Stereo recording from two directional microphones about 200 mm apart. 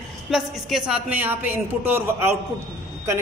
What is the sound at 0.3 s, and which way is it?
A woman's voice, centre (ahead or behind).